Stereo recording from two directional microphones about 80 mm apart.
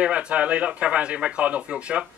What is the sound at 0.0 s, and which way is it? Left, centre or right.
Speech, centre.